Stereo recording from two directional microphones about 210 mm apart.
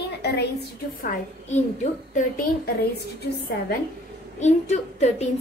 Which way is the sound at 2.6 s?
50° left (ahead or behind).